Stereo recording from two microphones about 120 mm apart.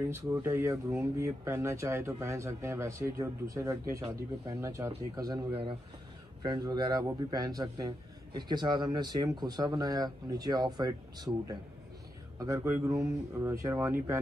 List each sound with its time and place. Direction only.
0.1 s a man's voice: 25° right (ahead or behind)